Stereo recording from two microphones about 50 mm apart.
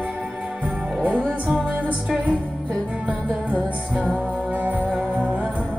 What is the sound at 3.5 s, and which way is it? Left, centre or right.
Music, right.